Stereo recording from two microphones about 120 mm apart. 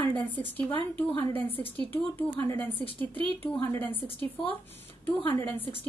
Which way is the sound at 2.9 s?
50° right (ahead or behind).